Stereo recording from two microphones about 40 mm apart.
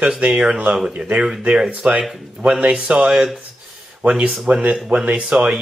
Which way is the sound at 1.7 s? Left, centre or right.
Centre.